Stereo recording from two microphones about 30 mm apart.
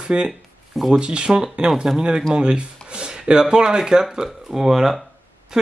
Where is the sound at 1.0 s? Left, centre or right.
Right.